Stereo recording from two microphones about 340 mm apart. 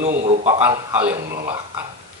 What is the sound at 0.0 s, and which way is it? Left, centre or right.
Speech, centre.